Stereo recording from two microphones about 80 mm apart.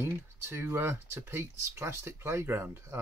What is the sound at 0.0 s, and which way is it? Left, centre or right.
Speech, right.